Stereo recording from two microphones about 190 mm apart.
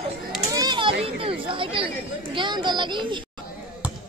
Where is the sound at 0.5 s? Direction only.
20° right (ahead or behind).